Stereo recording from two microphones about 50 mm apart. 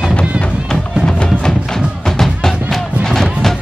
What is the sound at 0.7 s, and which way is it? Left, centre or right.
Music, centre.